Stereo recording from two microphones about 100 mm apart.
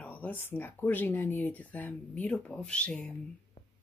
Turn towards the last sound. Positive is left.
turn(degrees=10)  # may be behind; listen again after turning